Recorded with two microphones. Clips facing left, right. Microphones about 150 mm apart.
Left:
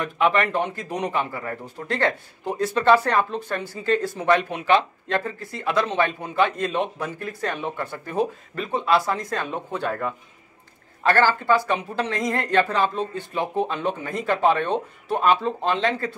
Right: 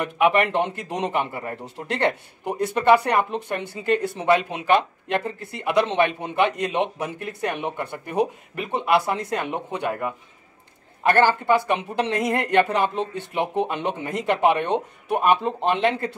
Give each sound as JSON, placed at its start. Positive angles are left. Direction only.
{"t": 0.0, "sound": "speech", "side_deg": -20}